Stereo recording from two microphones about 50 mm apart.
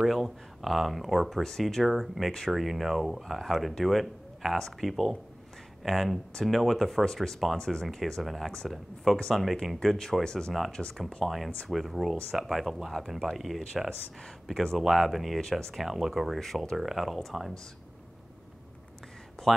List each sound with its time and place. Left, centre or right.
0.0 s speech: centre
7.1 s speech: centre
10.2 s speech: centre
11.2 s speech: centre
16.7 s speech: centre
19.4 s a sound: centre